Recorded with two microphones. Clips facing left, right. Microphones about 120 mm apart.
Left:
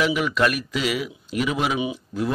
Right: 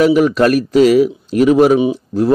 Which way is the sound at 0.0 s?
40° right (ahead or behind).